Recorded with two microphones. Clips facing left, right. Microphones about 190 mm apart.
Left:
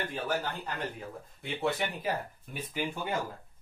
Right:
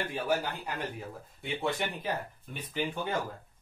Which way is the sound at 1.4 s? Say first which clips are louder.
Left 1 dB; centre (ahead or behind).